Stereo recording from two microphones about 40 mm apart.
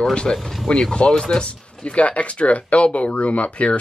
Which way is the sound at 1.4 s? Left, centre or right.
Left.